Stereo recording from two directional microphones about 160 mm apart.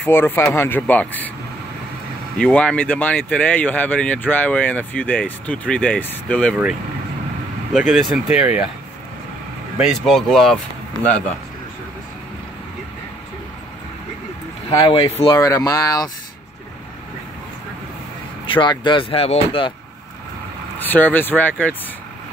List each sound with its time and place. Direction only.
0.0 s speech: 15° left (ahead or behind)
2.3 s speech: 5° left (ahead or behind)
7.9 s speech: centre (ahead or behind)
9.8 s speech: centre (ahead or behind)
14.8 s speech: 35° left (ahead or behind)
15.3 s speech: 20° left (ahead or behind)
18.5 s speech: 30° left (ahead or behind)
20.8 s speech: 10° left (ahead or behind)